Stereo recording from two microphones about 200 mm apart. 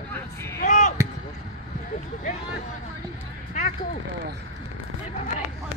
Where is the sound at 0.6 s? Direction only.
40° left (ahead or behind).